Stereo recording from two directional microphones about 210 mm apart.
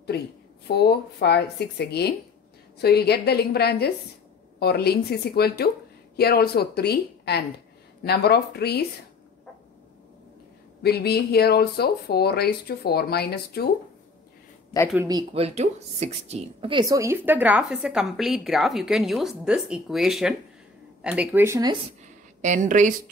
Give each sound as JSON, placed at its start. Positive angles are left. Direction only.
{"t": 0.1, "sound": "a sound", "side_deg": 50}
{"t": 0.7, "sound": "speech", "side_deg": 50}
{"t": 10.8, "sound": "speech", "side_deg": 50}
{"t": 14.7, "sound": "speech", "side_deg": 15}
{"t": 15.0, "sound": "a woman's voice", "side_deg": -25}
{"t": 22.4, "sound": "speech", "side_deg": -35}